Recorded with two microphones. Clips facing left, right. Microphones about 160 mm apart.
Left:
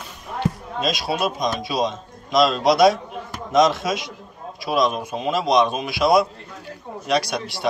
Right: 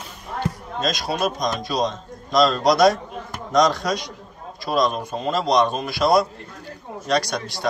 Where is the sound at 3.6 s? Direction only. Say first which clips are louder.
Left 1 dB; 20° left (ahead or behind).